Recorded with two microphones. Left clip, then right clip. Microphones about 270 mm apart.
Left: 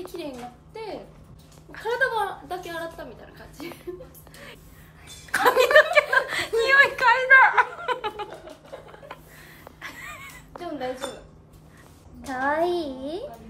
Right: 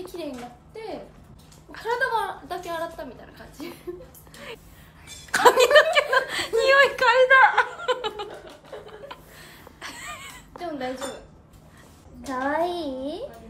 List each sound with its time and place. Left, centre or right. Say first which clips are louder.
1.7 s a woman's voice: even; centre
5.0 s chuckle: right 4 dB; centre
9.1 s a sound: right 1 dB; centre
12.3 s a child's voice: left 1 dB; centre